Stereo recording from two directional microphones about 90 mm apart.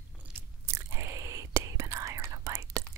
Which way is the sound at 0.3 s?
30° right (ahead or behind).